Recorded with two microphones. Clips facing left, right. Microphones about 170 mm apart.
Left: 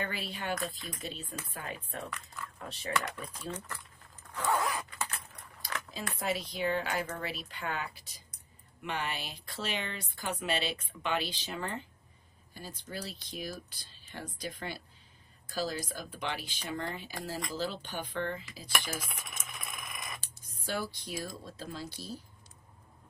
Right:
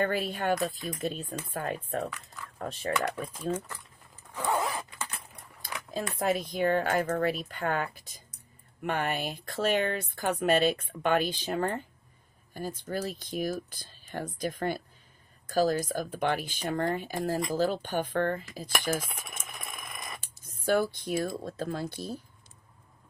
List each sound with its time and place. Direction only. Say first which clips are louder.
0.0 s speech: right 9 dB; 50° right (ahead or behind)
3.5 s zipper: right 7 dB; 10° right (ahead or behind)
5.9 s speech: right 7 dB; 50° right (ahead or behind)
20.4 s speech: right 10 dB; 55° right (ahead or behind)